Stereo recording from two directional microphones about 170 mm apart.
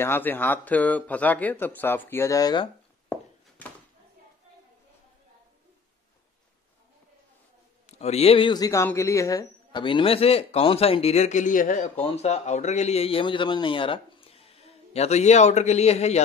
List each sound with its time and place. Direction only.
0.0 s speech: 10° left (ahead or behind)
7.8 s speech: 40° left (ahead or behind)